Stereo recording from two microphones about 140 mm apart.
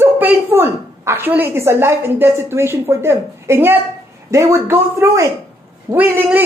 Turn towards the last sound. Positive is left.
turn(degrees=-15)  # may be behind; listen again after turning